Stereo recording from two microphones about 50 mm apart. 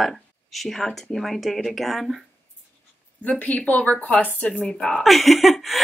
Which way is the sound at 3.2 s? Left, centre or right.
Left.